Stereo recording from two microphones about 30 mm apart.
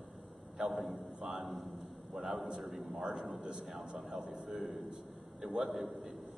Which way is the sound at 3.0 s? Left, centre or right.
Right.